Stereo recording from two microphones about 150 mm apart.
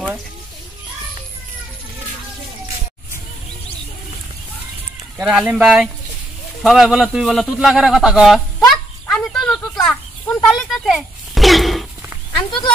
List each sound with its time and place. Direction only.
5.2 s a man's voice: 5° right (ahead or behind)
8.5 s a sound: 5° left (ahead or behind)
12.4 s speech: 30° left (ahead or behind)